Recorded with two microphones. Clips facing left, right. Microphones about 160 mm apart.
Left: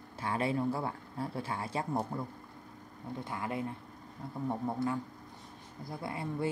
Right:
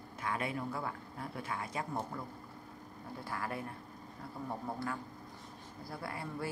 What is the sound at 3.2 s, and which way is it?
Speech, 20° left (ahead or behind).